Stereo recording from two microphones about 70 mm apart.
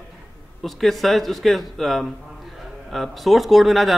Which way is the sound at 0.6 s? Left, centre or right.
Centre.